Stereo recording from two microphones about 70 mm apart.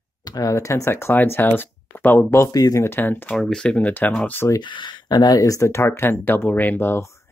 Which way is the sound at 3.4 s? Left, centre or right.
Centre.